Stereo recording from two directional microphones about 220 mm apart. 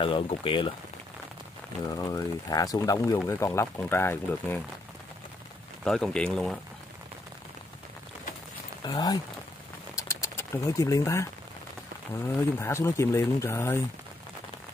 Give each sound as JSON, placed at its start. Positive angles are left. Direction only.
{"t": 0.0, "sound": "speech", "side_deg": 25}
{"t": 2.0, "sound": "speech", "side_deg": 15}
{"t": 5.9, "sound": "speech", "side_deg": 0}
{"t": 8.8, "sound": "speech", "side_deg": 15}
{"t": 9.9, "sound": "a sound", "side_deg": 10}
{"t": 12.5, "sound": "speech", "side_deg": 10}